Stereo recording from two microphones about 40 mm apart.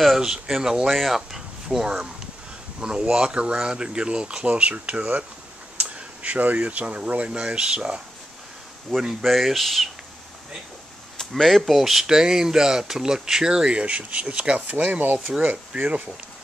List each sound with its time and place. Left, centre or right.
0.2 s speech: centre
0.8 s speech: centre; by 5.0 s right
5.8 s a sound: right
7.0 s speech: right
8.9 s speech: centre
11.1 s speech: centre; by 14.8 s right
14.8 s speech: right
15.7 s speech: right